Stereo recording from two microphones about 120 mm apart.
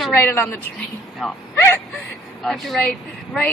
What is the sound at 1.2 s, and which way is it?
Speech, 5° right (ahead or behind).